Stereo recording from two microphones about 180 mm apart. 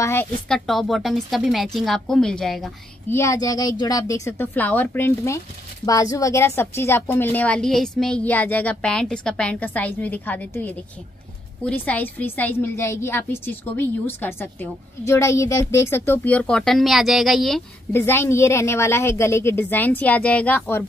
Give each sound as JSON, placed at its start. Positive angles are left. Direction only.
{"t": 0.0, "sound": "a woman's voice", "side_deg": 15}
{"t": 0.5, "sound": "a woman's voice", "side_deg": 0}
{"t": 3.1, "sound": "a woman's voice", "side_deg": 15}
{"t": 17.9, "sound": "a woman's voice", "side_deg": 15}